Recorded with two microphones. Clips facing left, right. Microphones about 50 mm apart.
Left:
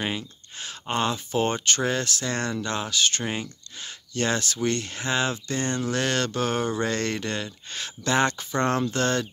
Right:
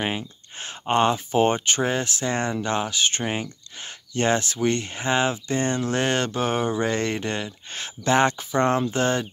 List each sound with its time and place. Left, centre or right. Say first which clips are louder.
0.0 s speech: right 2 dB; right